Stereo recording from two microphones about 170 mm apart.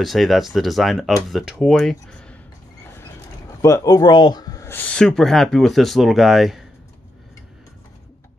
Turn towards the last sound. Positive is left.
turn(degrees=0)  # may be behind; listen again after turning